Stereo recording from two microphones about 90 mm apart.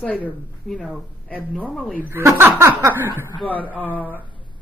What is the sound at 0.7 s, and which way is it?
Speech, 5° left (ahead or behind).